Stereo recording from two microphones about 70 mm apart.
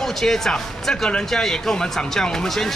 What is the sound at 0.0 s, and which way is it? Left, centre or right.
Speech, centre.